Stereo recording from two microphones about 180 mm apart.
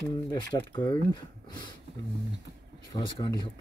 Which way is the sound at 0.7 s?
25° left (ahead or behind).